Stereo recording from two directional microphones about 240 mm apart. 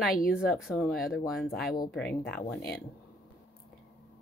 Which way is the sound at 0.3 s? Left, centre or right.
Centre.